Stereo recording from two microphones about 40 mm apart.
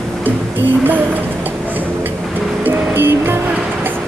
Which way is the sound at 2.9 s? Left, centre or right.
Right.